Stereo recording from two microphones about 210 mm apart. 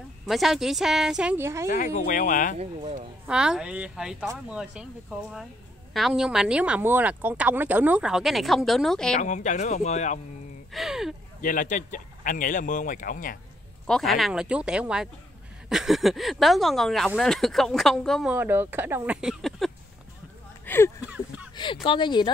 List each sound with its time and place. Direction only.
0.3 s speech: centre (ahead or behind)
1.7 s speech: 40° left (ahead or behind)
2.6 s speech: 30° right (ahead or behind)
3.3 s speech: 5° right (ahead or behind)
5.9 s speech: centre (ahead or behind)
9.2 s speech: 35° left (ahead or behind)
10.7 s speech: centre (ahead or behind)
11.4 s speech: 40° left (ahead or behind)
13.8 s speech: centre (ahead or behind)
20.6 s a sound: 10° left (ahead or behind)
21.0 s a sound: 5° right (ahead or behind)
21.8 s speech: 20° left (ahead or behind)